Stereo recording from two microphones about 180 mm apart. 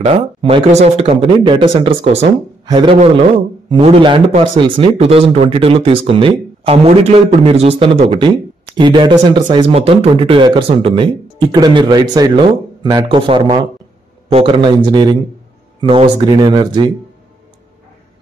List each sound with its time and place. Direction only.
0.0 s speech: 35° right (ahead or behind)